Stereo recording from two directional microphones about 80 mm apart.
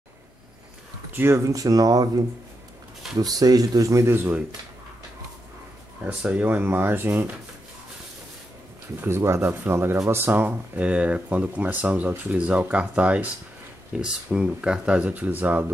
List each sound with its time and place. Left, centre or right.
1.1 s speech: right
6.0 s speech: centre
9.0 s speech: right